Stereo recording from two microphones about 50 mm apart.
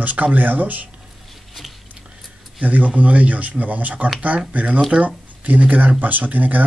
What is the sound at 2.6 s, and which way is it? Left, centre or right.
Speech, right.